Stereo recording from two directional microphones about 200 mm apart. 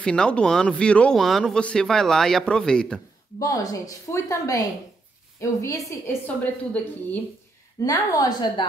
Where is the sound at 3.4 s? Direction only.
15° left (ahead or behind).